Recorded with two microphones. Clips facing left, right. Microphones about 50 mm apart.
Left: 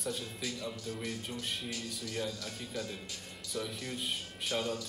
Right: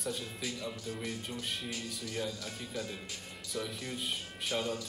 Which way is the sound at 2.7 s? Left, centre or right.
Centre.